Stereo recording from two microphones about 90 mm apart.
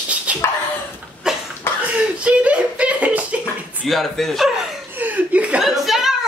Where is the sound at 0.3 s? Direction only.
15° right (ahead or behind).